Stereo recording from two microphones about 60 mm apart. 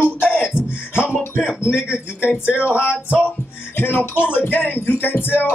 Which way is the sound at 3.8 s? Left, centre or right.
Left.